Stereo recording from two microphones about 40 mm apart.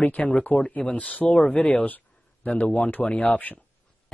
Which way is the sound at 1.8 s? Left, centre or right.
Left.